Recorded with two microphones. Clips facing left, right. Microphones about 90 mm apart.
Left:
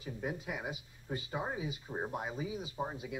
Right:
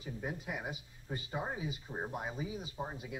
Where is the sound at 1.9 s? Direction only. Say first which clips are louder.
Left 3 dB; 15° left (ahead or behind).